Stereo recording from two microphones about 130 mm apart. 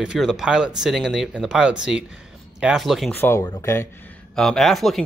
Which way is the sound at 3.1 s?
20° left (ahead or behind).